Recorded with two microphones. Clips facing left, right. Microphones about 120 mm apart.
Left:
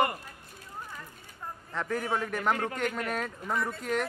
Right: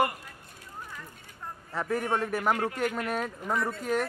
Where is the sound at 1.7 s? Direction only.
5° right (ahead or behind).